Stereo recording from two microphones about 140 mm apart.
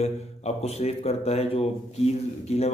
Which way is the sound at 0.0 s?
50° left (ahead or behind).